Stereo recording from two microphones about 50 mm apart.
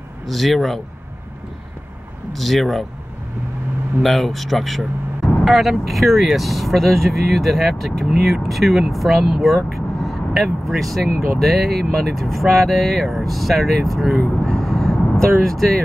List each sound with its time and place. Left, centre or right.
0.3 s speech: centre
2.3 s speech: centre
4.0 s speech: centre